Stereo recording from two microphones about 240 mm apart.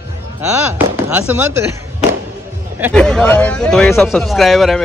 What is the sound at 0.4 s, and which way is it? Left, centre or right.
Speech, centre.